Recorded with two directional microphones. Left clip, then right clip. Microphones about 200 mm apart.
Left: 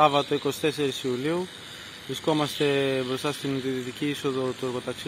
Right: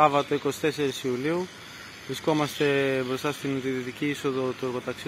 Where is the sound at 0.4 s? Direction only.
10° left (ahead or behind).